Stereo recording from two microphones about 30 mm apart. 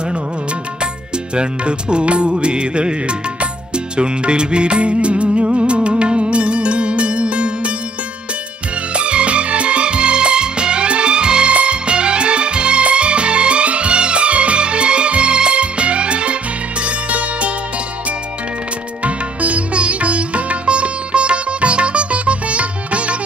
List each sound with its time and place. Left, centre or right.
1.3 s music: right
8.9 s music: right
19.0 s sitar: right